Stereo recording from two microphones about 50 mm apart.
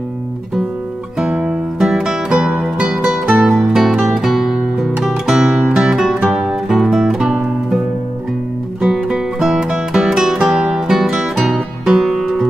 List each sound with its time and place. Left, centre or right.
1.2 s music: centre
8.8 s music: centre